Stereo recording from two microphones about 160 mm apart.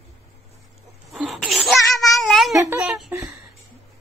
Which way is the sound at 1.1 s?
Centre (ahead or behind).